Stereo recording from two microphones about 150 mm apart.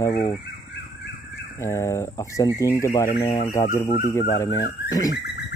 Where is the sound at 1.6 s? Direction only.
20° left (ahead or behind).